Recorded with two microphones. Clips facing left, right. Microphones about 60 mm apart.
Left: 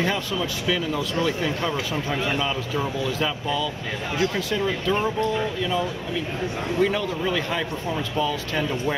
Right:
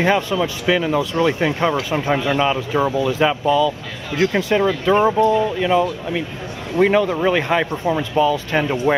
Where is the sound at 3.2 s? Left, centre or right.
Right.